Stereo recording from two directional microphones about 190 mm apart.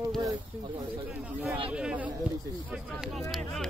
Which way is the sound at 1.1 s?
10° right (ahead or behind).